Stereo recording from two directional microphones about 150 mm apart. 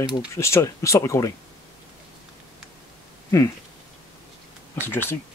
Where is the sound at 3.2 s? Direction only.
20° left (ahead or behind).